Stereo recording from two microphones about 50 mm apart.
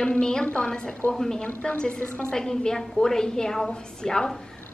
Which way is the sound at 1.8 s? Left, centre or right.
Left.